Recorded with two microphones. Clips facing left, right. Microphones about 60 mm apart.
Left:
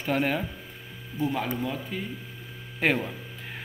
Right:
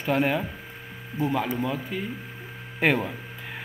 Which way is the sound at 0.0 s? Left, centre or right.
Centre.